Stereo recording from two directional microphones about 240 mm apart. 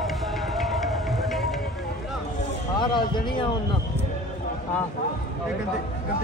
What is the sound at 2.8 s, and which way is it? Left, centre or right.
Speech, centre.